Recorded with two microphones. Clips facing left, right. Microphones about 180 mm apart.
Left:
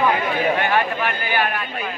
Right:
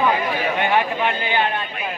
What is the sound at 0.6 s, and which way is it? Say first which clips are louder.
Speech: right 1 dB; 20° right (ahead or behind).